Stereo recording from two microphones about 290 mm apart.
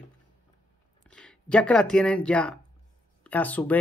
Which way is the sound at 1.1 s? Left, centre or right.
Centre.